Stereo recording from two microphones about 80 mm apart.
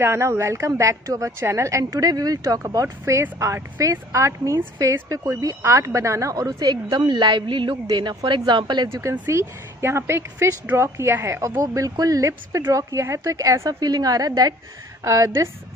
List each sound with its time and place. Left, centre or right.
0.0 s a woman's voice: right
5.6 s a woman's voice: right
7.9 s speech: right
8.8 s a woman's voice: right